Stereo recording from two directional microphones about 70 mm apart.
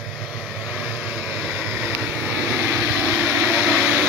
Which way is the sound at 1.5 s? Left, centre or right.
Centre.